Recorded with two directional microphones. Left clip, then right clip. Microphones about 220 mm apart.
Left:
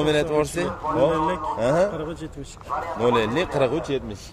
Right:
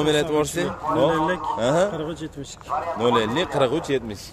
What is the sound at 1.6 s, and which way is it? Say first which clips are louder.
Speech: even; 10° right (ahead or behind).